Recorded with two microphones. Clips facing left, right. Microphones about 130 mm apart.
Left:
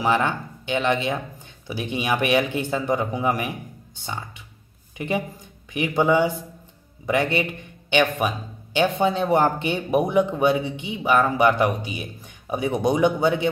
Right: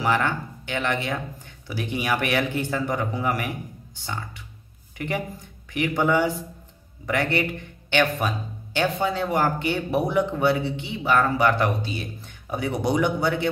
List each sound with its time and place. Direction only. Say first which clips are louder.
0.0 s a man's voice: left 2 dB; 15° left (ahead or behind)